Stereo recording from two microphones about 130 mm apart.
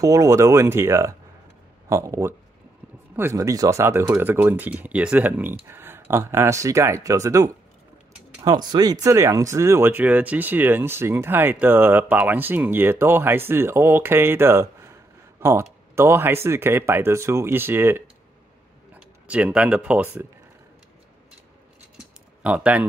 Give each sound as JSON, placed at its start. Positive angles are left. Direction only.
{"t": 0.0, "sound": "speech", "side_deg": -25}
{"t": 21.9, "sound": "typing", "side_deg": -10}